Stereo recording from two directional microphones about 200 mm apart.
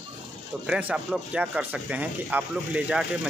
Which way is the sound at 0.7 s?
5° right (ahead or behind).